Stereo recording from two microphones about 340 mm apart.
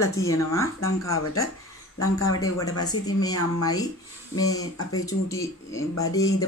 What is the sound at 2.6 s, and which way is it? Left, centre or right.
Speech, left.